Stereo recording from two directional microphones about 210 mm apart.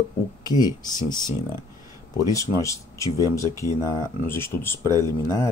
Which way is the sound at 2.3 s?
15° left (ahead or behind).